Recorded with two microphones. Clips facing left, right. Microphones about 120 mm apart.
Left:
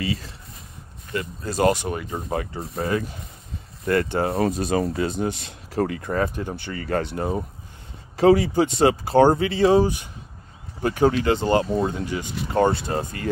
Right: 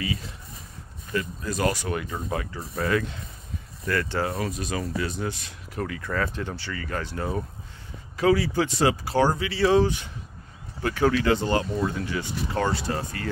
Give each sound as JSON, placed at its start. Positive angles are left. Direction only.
{"t": 0.0, "sound": "speech", "side_deg": 30}
{"t": 5.0, "sound": "speech", "side_deg": 20}
{"t": 5.8, "sound": "speech", "side_deg": 35}
{"t": 6.0, "sound": "speech", "side_deg": 25}
{"t": 6.3, "sound": "speech", "side_deg": 15}
{"t": 6.7, "sound": "speech", "side_deg": 35}
{"t": 7.1, "sound": "speech", "side_deg": 20}
{"t": 9.1, "sound": "speech", "side_deg": 50}
{"t": 9.4, "sound": "speech", "side_deg": 25}
{"t": 9.8, "sound": "speech", "side_deg": 10}
{"t": 12.0, "sound": "speech", "side_deg": 15}